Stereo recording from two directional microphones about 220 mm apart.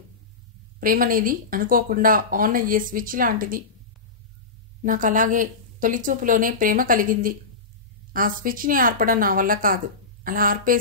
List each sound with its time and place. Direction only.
0.7 s speech: 40° right (ahead or behind)
4.8 s speech: 35° right (ahead or behind)